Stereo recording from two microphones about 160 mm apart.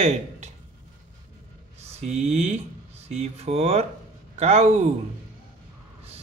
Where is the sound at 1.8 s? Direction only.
45° right (ahead or behind).